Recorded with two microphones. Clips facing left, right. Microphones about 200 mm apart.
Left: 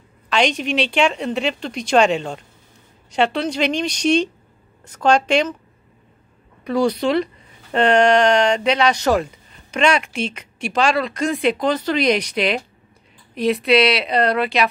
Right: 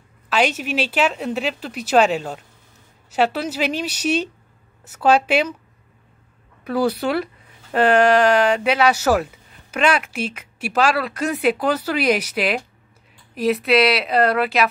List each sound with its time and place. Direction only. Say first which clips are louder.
0.3 s a woman's voice: left 1 dB; 5° right (ahead or behind)
6.6 s speech: left 2 dB; 5° right (ahead or behind)